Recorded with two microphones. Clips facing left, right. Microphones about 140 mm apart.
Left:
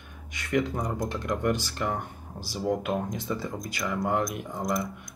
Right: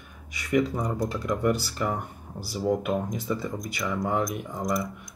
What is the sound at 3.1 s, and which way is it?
Speech, centre (ahead or behind).